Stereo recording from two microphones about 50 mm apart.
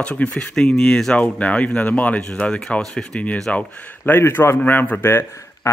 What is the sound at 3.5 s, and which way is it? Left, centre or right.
Speech, left.